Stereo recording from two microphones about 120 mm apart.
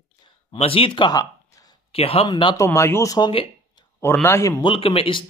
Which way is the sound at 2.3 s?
40° left (ahead or behind).